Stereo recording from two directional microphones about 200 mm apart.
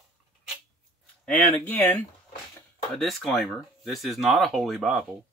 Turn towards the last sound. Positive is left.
turn(degrees=0)  # may be behind; listen again after turning